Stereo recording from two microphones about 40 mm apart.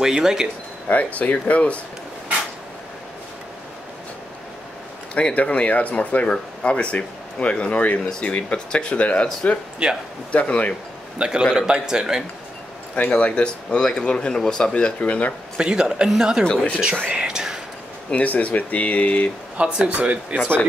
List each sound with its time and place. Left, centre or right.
0.0 s a man's voice: centre
0.8 s speech: left
5.3 s speech: left
9.8 s a man's voice: centre
10.3 s speech: left
11.1 s a man's voice: right
13.2 s speech: left
15.5 s a man's voice: centre
16.4 s speech: left
17.1 s speech: centre
18.1 s speech: left
19.5 s speech: right